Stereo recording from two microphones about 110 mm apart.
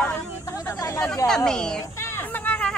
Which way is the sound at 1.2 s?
30° left (ahead or behind).